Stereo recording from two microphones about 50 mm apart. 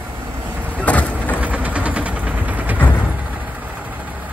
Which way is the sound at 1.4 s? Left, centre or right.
Right.